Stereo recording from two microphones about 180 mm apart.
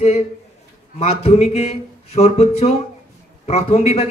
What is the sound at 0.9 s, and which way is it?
Speech, 35° left (ahead or behind).